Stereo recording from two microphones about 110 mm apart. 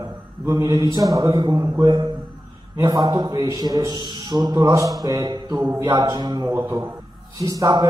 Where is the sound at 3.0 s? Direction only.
40° right (ahead or behind).